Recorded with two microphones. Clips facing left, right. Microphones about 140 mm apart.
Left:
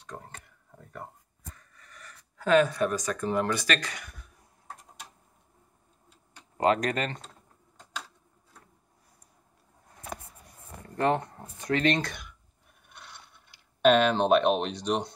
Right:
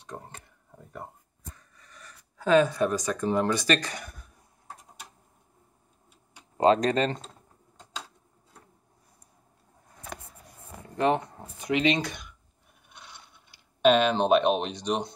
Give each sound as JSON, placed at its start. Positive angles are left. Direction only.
{"t": 0.1, "sound": "a sound", "side_deg": -15}
{"t": 6.6, "sound": "speech", "side_deg": -25}
{"t": 11.0, "sound": "speech", "side_deg": -15}
{"t": 12.9, "sound": "scrape", "side_deg": 0}
{"t": 13.8, "sound": "speech", "side_deg": 0}